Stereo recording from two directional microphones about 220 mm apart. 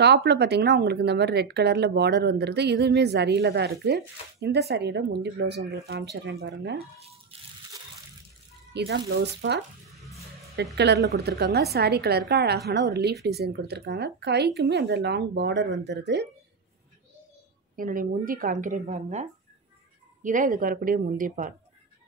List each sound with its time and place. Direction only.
0.0 s speech: 50° right (ahead or behind)
7.0 s a sound: 25° right (ahead or behind)
8.7 s speech: 50° right (ahead or behind)
9.9 s music: centre (ahead or behind)
10.5 s speech: 50° right (ahead or behind)
17.7 s speech: 40° right (ahead or behind)